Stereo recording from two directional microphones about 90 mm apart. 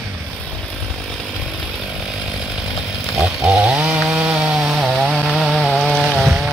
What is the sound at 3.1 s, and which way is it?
Chainsaw, centre (ahead or behind).